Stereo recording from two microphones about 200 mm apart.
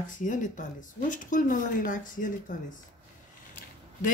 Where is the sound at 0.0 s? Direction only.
40° left (ahead or behind).